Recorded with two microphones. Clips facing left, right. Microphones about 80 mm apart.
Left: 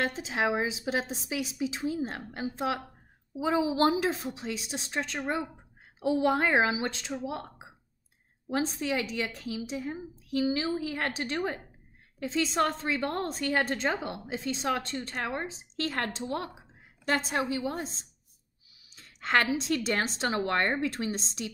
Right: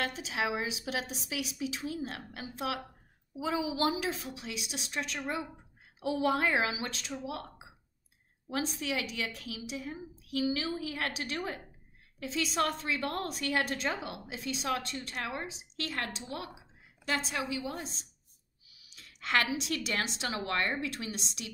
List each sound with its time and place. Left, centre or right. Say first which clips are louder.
0.0 s a woman's voice: left 4 dB; left